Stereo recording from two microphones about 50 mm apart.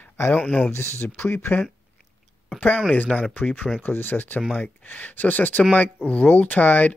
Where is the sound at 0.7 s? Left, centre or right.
Left.